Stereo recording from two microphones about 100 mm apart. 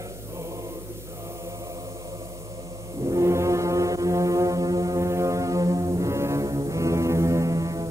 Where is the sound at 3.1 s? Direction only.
30° right (ahead or behind).